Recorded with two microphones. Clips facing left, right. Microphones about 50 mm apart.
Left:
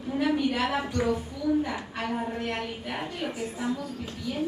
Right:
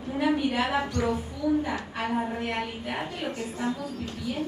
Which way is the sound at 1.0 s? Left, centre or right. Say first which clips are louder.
Even; centre.